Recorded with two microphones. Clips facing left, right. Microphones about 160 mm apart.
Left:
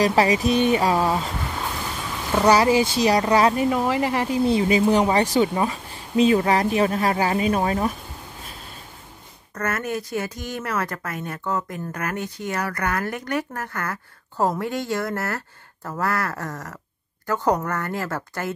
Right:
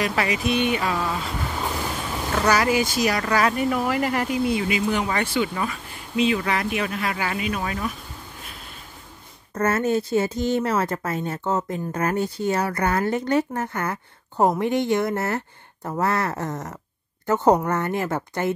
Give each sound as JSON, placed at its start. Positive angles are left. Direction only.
{"t": 0.0, "sound": "speech", "side_deg": 35}
{"t": 2.4, "sound": "speech", "side_deg": 30}
{"t": 9.5, "sound": "speech", "side_deg": -25}